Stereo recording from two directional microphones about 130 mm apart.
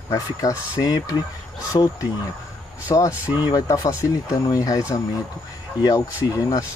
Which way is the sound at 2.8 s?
25° left (ahead or behind).